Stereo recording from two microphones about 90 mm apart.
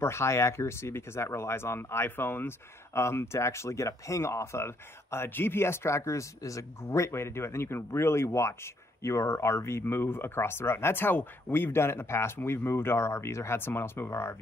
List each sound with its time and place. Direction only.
0.0 s speech: 30° left (ahead or behind)